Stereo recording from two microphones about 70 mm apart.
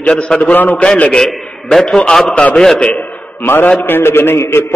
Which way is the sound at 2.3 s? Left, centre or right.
Centre.